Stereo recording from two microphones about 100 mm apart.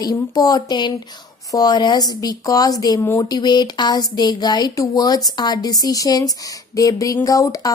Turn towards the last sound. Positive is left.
turn(degrees=35)  # may be behind; listen again after turning